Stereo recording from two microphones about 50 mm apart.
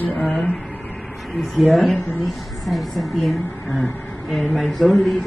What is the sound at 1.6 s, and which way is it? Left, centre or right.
Speech, centre.